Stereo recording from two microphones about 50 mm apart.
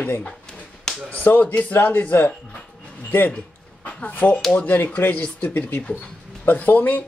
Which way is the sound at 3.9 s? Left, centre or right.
Left.